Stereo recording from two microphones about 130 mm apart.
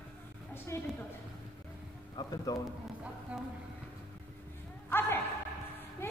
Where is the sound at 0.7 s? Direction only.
20° left (ahead or behind).